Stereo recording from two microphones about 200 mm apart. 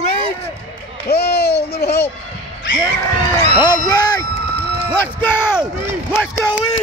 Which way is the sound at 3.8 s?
20° left (ahead or behind).